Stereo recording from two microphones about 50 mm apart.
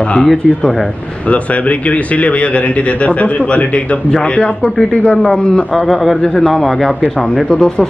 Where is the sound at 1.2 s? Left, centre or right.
Left.